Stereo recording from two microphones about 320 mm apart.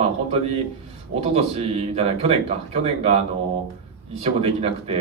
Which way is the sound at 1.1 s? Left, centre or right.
Centre.